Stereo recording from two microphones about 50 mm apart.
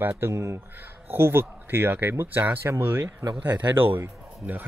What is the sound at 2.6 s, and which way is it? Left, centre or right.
A man's voice, right.